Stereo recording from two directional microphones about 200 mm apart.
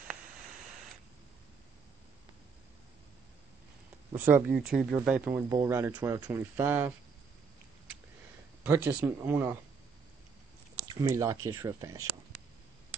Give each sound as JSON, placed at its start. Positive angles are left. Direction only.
{"t": 4.3, "sound": "speech", "side_deg": -5}
{"t": 8.6, "sound": "speech", "side_deg": -10}
{"t": 10.9, "sound": "speech", "side_deg": -15}